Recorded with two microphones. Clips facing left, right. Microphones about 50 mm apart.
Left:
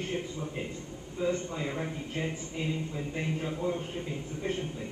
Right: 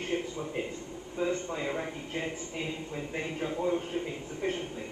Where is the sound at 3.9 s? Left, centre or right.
Right.